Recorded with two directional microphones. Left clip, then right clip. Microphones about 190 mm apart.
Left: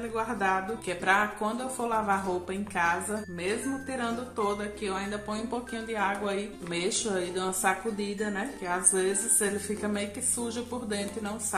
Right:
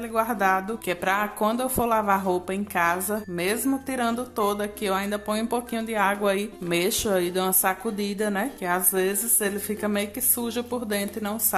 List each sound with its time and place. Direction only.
0.1 s a woman's voice: 40° right (ahead or behind)